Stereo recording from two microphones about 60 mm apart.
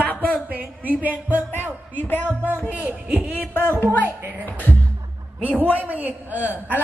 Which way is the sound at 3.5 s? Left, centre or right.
Left.